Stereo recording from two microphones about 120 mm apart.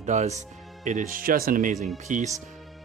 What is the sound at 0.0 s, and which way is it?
Speech, 75° right (ahead or behind).